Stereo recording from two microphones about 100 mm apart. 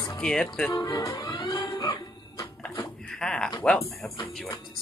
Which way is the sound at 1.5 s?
45° left (ahead or behind).